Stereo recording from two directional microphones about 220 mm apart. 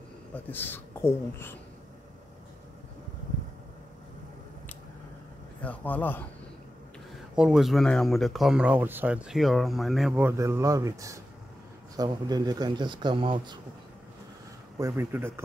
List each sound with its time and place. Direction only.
0.3 s speech: 10° left (ahead or behind)
5.6 s speech: 5° left (ahead or behind)
7.3 s speech: 5° right (ahead or behind); by 13.6 s 25° right (ahead or behind)
14.8 s speech: 10° right (ahead or behind)